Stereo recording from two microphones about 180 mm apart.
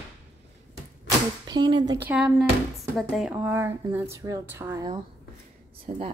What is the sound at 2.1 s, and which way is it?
Speech, 10° right (ahead or behind).